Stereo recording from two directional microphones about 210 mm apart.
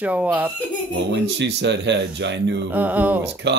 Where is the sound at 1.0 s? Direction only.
55° right (ahead or behind).